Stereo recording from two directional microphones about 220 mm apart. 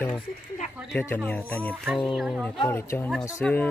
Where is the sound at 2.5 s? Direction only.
15° left (ahead or behind).